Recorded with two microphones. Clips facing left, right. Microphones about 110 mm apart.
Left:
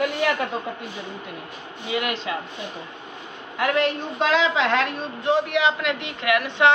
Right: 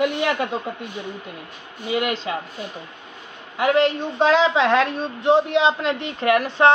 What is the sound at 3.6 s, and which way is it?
A man's voice, 30° right (ahead or behind).